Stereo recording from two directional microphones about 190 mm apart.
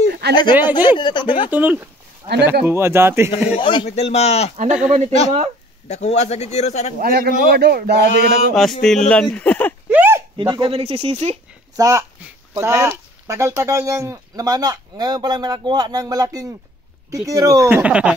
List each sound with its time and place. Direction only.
0.1 s a sound: 60° right (ahead or behind)
0.5 s speech: 10° right (ahead or behind)
0.9 s speech: 25° left (ahead or behind)
1.5 s speech: 10° right (ahead or behind)
3.5 s a man's voice: 25° left (ahead or behind)
4.8 s speech: 35° right (ahead or behind)
5.9 s a man's voice: 35° left (ahead or behind)
7.0 s a man's voice: 50° right (ahead or behind)
8.8 s speech: 5° left (ahead or behind)
9.8 s a sound: 10° right (ahead or behind)
10.3 s speech: 25° right (ahead or behind)
11.7 s speech: 15° right (ahead or behind)